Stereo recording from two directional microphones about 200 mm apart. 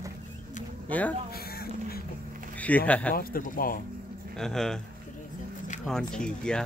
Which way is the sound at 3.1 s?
45° left (ahead or behind).